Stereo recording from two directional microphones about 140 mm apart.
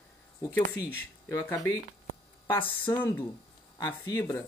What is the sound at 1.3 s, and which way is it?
Speech, 25° left (ahead or behind).